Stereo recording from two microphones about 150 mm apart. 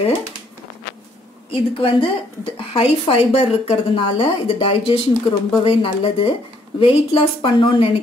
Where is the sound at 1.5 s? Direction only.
35° left (ahead or behind).